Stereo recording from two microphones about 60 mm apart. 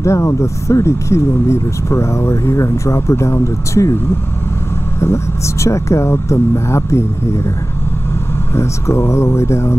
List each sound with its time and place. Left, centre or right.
0.0 s speech: left
5.0 s speech: left
8.5 s speech: left